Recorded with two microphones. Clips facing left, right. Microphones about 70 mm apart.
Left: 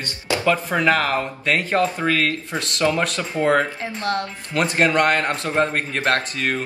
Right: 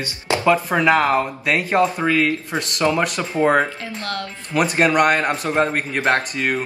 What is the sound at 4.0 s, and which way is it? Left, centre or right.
Speech, left.